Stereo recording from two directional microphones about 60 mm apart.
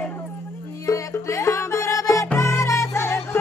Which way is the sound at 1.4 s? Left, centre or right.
Left.